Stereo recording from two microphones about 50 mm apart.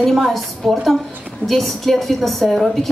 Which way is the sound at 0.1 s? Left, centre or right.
Centre.